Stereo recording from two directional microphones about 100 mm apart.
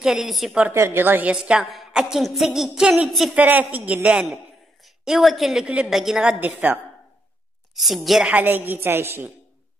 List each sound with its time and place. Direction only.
0.0 s a woman's voice: 5° right (ahead or behind)
0.7 s a woman's voice: 25° right (ahead or behind)
1.3 s a woman's voice: 10° right (ahead or behind)
3.3 s a woman's voice: 15° right (ahead or behind)
6.4 s a woman's voice: 20° right (ahead or behind)
7.7 s a woman's voice: centre (ahead or behind)
8.3 s a woman's voice: 15° right (ahead or behind)